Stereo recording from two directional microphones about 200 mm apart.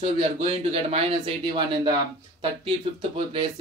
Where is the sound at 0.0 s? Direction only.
25° right (ahead or behind).